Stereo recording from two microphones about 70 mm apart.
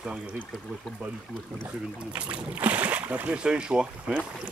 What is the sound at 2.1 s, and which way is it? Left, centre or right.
Speech, right.